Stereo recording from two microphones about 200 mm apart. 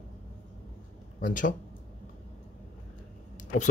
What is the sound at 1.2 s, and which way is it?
Speech, 40° left (ahead or behind).